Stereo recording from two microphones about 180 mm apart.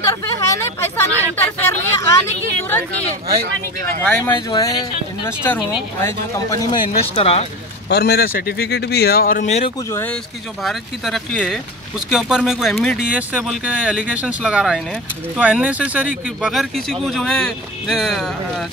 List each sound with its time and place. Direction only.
0.0 s a sound: 15° left (ahead or behind)
3.3 s speech: 60° right (ahead or behind)
4.0 s speech: 5° left (ahead or behind)
4.3 s speech: 20° left (ahead or behind)
7.0 s speech: 35° left (ahead or behind)
7.9 s speech: 60° left (ahead or behind); by 9.7 s 40° left (ahead or behind)
10.6 s speech: centre (ahead or behind)